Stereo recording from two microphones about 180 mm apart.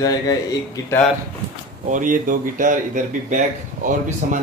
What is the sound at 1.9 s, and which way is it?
Speech, 45° right (ahead or behind).